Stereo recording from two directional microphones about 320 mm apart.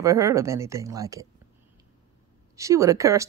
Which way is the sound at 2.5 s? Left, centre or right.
Centre.